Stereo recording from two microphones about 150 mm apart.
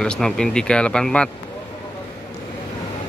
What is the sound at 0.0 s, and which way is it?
Speech, 5° left (ahead or behind).